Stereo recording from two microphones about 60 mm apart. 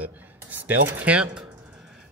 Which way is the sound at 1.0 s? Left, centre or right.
Centre.